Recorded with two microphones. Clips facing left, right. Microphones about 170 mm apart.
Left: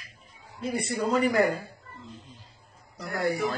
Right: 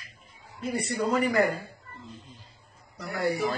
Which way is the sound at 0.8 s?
20° left (ahead or behind).